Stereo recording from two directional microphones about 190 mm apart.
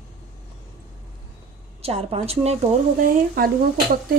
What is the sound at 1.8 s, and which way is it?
Speech, 30° right (ahead or behind).